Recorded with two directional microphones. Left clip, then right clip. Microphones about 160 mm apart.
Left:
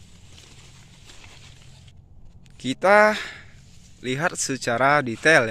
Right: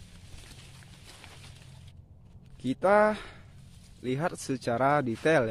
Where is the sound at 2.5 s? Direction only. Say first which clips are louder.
Left 7 dB; 5° left (ahead or behind).